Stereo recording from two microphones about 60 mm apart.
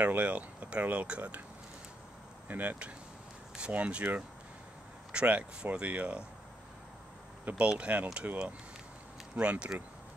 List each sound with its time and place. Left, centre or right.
0.0 s speech: right
2.4 s speech: right
7.4 s speech: right
9.3 s speech: right